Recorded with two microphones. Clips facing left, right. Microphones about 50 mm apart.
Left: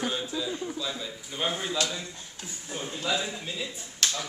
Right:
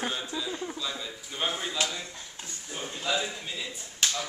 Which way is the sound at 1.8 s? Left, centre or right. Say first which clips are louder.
Right 1 dB; right.